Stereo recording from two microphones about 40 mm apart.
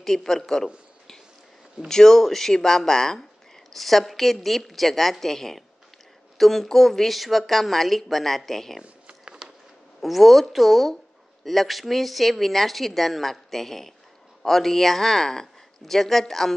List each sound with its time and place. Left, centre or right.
0.0 s speech: centre
1.9 s speech: centre
8.8 s a sound: right
10.0 s speech: centre